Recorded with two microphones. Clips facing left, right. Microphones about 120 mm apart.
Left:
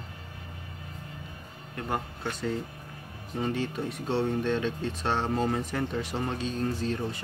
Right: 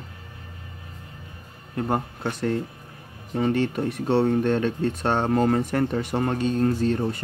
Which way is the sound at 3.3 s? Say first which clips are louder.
Right 7 dB; 70° right (ahead or behind).